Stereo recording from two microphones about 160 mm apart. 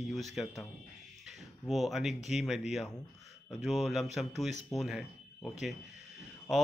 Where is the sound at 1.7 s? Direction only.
Centre (ahead or behind).